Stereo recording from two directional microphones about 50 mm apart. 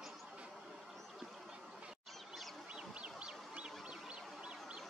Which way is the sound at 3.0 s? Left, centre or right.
Right.